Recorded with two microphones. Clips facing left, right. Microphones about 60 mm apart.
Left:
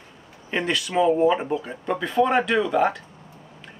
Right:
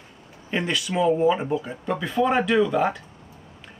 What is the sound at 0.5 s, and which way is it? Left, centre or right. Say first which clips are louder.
Speech: left 1 dB; centre.